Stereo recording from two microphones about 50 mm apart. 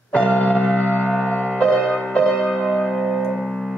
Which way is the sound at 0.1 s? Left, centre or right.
Left.